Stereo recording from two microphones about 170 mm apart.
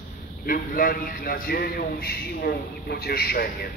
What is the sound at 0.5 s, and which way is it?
A man's voice, 55° left (ahead or behind).